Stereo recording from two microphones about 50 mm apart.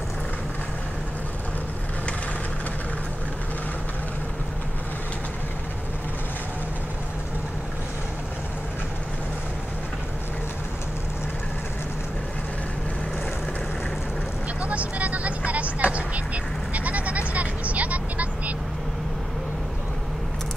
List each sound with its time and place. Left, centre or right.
14.6 s vehicle: right
16.7 s bleat: right